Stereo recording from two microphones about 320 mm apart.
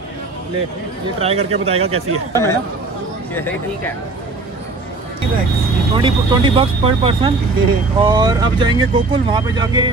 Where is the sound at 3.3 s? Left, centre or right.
Centre.